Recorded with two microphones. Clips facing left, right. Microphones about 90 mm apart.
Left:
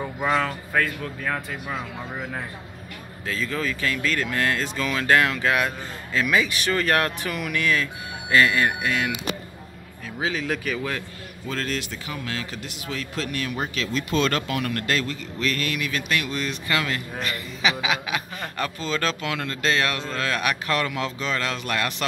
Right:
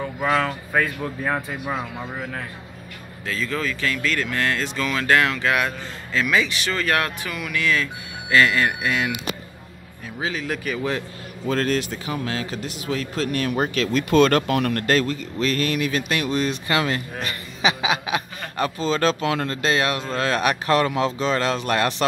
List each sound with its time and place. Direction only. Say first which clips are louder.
0.0 s speech: right 2 dB; 5° left (ahead or behind)
0.8 s speech: right 3 dB; 20° right (ahead or behind)
3.3 s speech: right 1 dB; 20° left (ahead or behind)
8.4 s speech: right 1 dB; 20° left (ahead or behind)
8.8 s speech: right 1 dB; 10° right (ahead or behind)
10.1 s speech: even; centre (ahead or behind)
11.4 s speech: right 7 dB; 40° right (ahead or behind)
19.6 s speech: even; 20° right (ahead or behind)
20.2 s speech: right 4 dB; 30° right (ahead or behind)